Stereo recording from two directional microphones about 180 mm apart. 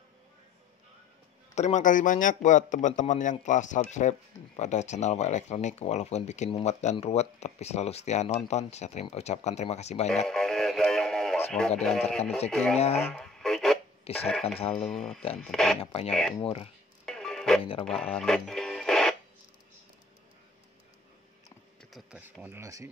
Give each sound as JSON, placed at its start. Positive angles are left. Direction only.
{"t": 1.5, "sound": "a man's voice", "side_deg": 40}
{"t": 10.2, "sound": "radio", "side_deg": 0}
{"t": 11.8, "sound": "speech", "side_deg": 0}
{"t": 12.7, "sound": "a man's voice", "side_deg": 35}
{"t": 13.1, "sound": "radio", "side_deg": 0}
{"t": 14.1, "sound": "speech", "side_deg": 5}
{"t": 15.8, "sound": "a man's voice", "side_deg": 30}
{"t": 16.1, "sound": "speech", "side_deg": 0}
{"t": 16.3, "sound": "a man's voice", "side_deg": 30}
{"t": 17.0, "sound": "music", "side_deg": 5}
{"t": 21.9, "sound": "speech", "side_deg": -5}